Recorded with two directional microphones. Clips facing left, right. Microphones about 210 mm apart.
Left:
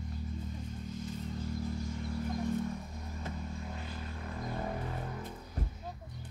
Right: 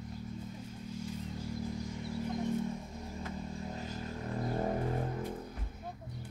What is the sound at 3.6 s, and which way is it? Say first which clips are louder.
Vehicle: right 2 dB; 35° right (ahead or behind).